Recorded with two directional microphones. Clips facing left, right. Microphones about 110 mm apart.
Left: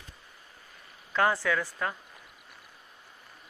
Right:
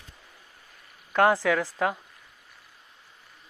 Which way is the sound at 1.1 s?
65° right (ahead or behind).